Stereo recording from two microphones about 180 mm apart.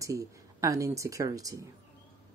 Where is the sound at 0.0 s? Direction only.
20° right (ahead or behind).